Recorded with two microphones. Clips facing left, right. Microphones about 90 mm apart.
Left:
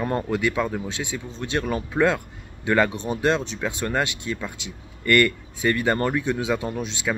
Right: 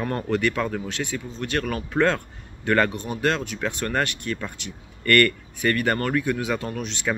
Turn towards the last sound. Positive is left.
turn(degrees=15)  # may be behind; listen again after turning